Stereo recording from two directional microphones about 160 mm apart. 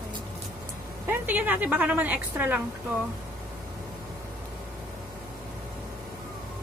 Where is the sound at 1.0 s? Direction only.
10° right (ahead or behind).